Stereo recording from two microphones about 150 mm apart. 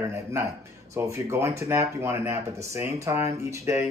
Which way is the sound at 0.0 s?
20° right (ahead or behind).